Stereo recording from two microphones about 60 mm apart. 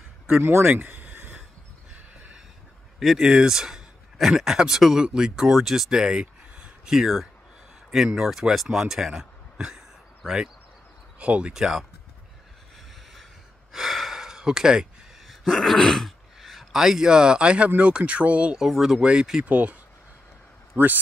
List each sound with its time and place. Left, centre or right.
0.4 s a sound: right
3.2 s speech: centre
11.5 s speech: centre
13.7 s gasp: centre
15.4 s speech: centre; by 18.6 s right
18.6 s speech: centre
18.9 s speech: centre